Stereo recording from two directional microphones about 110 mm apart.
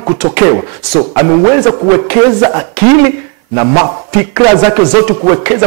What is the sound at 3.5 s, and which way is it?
A man's voice, 20° right (ahead or behind).